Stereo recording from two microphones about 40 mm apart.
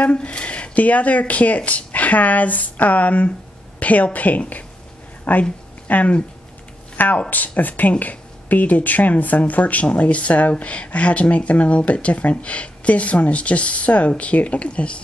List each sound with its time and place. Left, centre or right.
0.0 s speech: left
7.2 s speech: left